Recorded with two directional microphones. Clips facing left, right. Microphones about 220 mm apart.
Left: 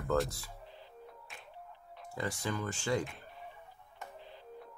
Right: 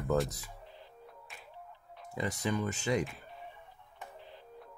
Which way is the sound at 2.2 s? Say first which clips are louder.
Right 3 dB; 20° right (ahead or behind).